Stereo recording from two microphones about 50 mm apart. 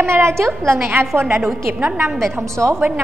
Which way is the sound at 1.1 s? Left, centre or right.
Right.